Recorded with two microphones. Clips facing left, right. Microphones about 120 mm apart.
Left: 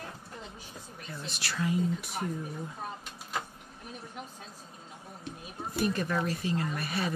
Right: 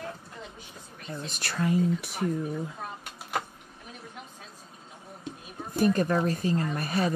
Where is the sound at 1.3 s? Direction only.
50° right (ahead or behind).